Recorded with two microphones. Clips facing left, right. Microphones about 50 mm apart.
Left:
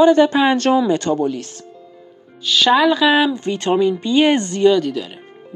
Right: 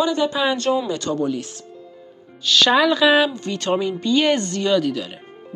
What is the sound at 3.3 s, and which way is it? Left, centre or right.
Speech, left.